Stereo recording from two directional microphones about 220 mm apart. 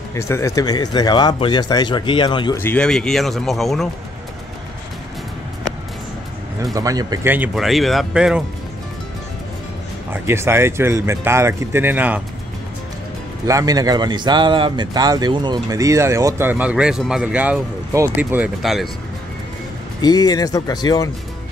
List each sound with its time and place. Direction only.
0.1 s speech: 15° left (ahead or behind)
2.6 s speech: 5° left (ahead or behind)
6.6 s speech: 15° right (ahead or behind)
10.2 s speech: 10° right (ahead or behind)
13.5 s speech: 15° right (ahead or behind)
20.0 s speech: 15° left (ahead or behind)